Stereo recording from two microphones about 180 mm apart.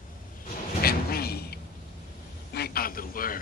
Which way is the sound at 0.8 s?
60° left (ahead or behind).